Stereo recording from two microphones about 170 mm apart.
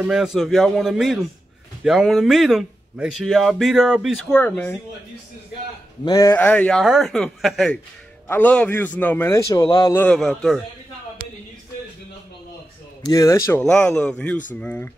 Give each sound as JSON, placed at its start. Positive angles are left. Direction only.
{"t": 0.1, "sound": "speech", "side_deg": -5}
{"t": 6.0, "sound": "speech", "side_deg": 20}
{"t": 6.3, "sound": "a man's voice", "side_deg": 10}
{"t": 9.9, "sound": "speech", "side_deg": 5}
{"t": 13.0, "sound": "speech", "side_deg": 20}
{"t": 13.5, "sound": "a man's voice", "side_deg": 5}